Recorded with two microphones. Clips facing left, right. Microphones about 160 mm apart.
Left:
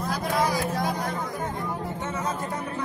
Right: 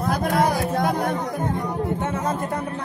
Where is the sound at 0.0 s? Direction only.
55° right (ahead or behind).